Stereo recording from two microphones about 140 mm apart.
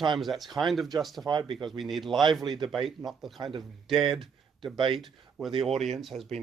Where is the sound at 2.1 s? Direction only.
35° right (ahead or behind).